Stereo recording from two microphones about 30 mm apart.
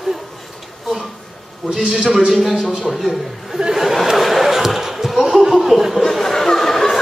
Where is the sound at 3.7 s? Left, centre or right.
Centre.